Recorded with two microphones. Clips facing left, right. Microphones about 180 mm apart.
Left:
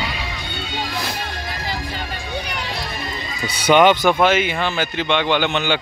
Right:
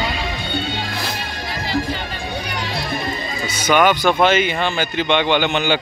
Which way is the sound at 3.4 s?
30° left (ahead or behind).